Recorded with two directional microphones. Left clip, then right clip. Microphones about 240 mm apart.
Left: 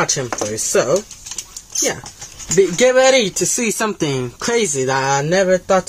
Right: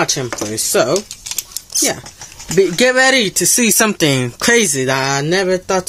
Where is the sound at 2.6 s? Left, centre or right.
Right.